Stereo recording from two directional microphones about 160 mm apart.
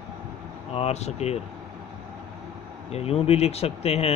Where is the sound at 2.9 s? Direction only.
40° left (ahead or behind).